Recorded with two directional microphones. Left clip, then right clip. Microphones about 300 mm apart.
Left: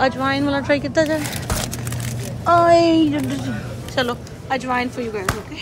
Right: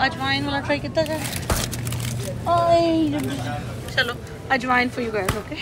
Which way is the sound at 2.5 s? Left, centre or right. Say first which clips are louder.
Left 5 dB; left.